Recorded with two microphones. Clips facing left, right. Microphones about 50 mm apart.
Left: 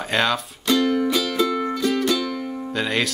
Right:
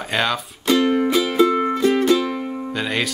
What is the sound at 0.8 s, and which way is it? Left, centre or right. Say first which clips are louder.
Music: right 3 dB; right.